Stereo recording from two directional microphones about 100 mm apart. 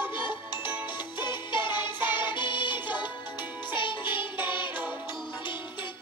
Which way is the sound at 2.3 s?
50° left (ahead or behind).